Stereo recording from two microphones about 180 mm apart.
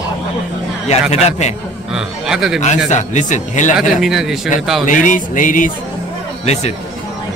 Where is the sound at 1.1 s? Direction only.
35° left (ahead or behind).